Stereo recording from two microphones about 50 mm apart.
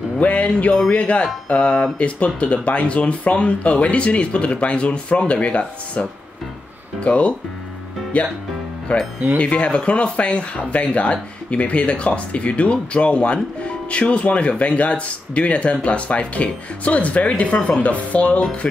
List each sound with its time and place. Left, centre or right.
0.2 s speech: left
18.4 s speech: centre